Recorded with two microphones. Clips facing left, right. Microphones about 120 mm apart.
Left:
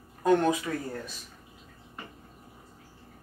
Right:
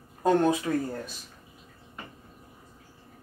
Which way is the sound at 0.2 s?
30° right (ahead or behind).